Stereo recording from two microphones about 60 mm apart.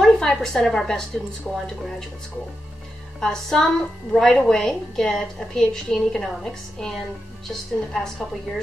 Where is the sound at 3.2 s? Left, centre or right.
Centre.